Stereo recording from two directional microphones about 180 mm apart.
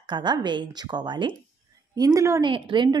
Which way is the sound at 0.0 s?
25° right (ahead or behind).